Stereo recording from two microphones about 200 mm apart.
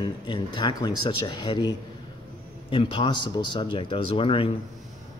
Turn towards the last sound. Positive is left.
turn(degrees=25)  # may be behind; listen again after turning